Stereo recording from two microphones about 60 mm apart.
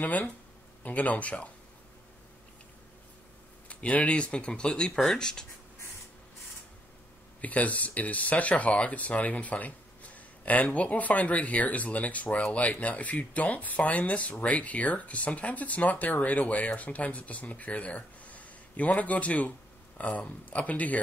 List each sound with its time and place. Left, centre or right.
0.0 s speech: left
3.6 s speech: left
7.4 s speech: left